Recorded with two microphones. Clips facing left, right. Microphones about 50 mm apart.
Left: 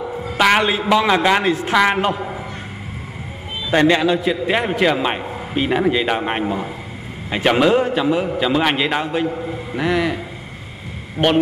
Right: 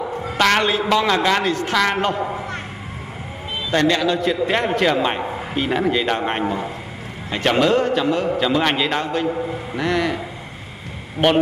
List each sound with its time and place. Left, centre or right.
0.4 s a man's voice: centre
3.7 s a man's voice: centre
4.2 s a man's voice: centre
11.2 s speech: centre